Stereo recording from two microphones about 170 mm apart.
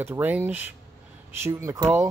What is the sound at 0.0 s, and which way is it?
Speech, 10° right (ahead or behind).